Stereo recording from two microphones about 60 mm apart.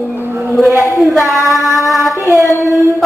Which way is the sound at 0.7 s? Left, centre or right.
Left.